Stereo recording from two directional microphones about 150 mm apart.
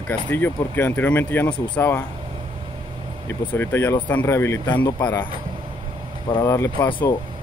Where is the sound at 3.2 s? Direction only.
15° left (ahead or behind).